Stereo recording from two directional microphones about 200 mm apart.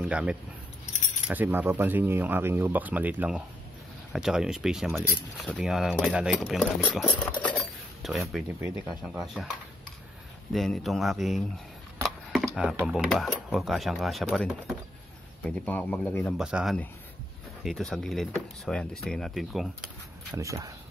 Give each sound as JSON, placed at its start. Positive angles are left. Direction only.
{"t": 0.0, "sound": "speech", "side_deg": -5}
{"t": 8.5, "sound": "speech", "side_deg": -10}
{"t": 10.5, "sound": "speech", "side_deg": 0}
{"t": 20.2, "sound": "speech", "side_deg": -15}